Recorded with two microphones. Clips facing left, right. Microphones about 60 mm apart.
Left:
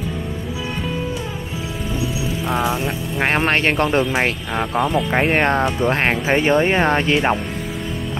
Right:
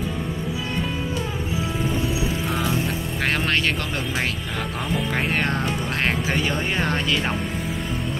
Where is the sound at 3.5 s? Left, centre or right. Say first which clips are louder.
Left 6 dB; left.